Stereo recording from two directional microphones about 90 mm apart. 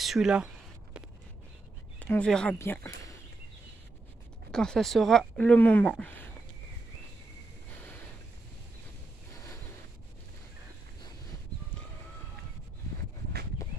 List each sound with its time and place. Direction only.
0.0 s speech: 5° right (ahead or behind)
2.0 s speech: 15° left (ahead or behind)
2.6 s speech: 25° left (ahead or behind)
4.5 s speech: 5° left (ahead or behind)